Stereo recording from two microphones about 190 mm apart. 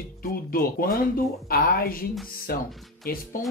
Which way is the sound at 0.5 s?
50° left (ahead or behind).